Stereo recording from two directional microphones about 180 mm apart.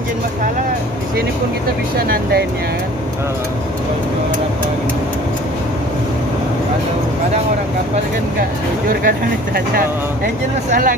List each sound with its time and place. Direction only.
2.0 s speech: 55° right (ahead or behind)
9.0 s speech: 55° right (ahead or behind)